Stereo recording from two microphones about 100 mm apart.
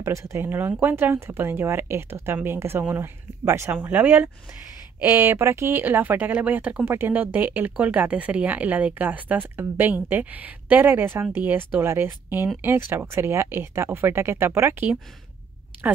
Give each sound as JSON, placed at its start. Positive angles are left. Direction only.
{"t": 0.0, "sound": "speech", "side_deg": -30}
{"t": 3.7, "sound": "speech", "side_deg": -15}